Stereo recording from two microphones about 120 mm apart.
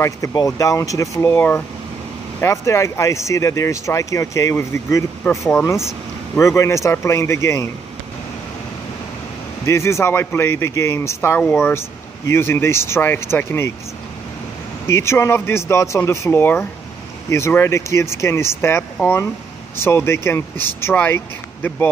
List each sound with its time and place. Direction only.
0.0 s speech: 30° left (ahead or behind)
9.7 s speech: 25° left (ahead or behind)
14.9 s speech: 20° left (ahead or behind)